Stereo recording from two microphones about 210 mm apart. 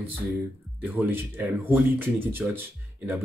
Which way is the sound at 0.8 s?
10° right (ahead or behind).